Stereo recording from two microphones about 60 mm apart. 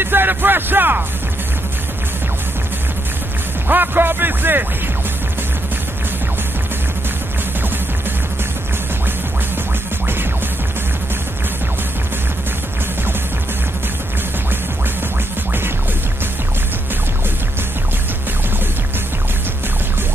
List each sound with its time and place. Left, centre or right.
0.0 s music: right
3.6 s music: right